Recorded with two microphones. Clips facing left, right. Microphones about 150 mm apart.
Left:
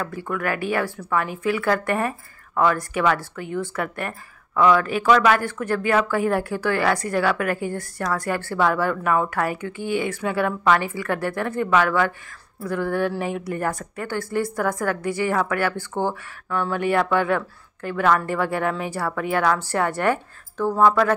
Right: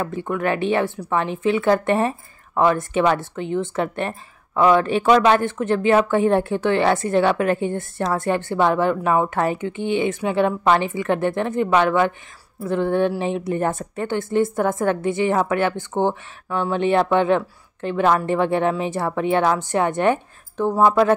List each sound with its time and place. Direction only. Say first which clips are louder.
0.0 s speech: right 4 dB; 25° right (ahead or behind)